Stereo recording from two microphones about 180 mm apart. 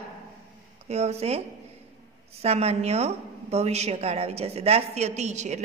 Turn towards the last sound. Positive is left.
turn(degrees=-40)  # may be behind; listen again after turning